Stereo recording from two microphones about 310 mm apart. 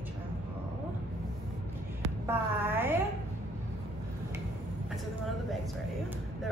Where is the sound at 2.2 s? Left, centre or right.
Centre.